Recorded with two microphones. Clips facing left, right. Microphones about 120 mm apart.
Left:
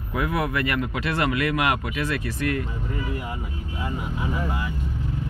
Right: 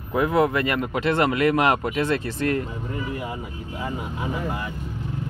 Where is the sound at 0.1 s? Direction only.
25° right (ahead or behind).